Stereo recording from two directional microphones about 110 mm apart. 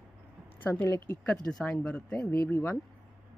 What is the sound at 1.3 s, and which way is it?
Speech, 5° left (ahead or behind).